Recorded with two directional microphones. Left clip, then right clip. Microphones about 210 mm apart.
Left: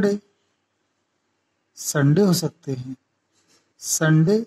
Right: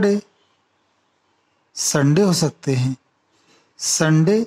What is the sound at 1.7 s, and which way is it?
Speech, 40° right (ahead or behind).